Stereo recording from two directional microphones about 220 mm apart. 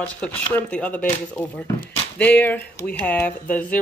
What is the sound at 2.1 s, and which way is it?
Speech, 5° left (ahead or behind).